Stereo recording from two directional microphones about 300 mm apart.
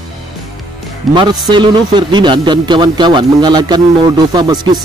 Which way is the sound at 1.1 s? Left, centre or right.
Centre.